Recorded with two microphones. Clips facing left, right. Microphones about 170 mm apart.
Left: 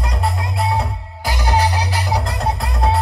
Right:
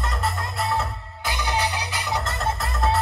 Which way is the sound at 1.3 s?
35° left (ahead or behind).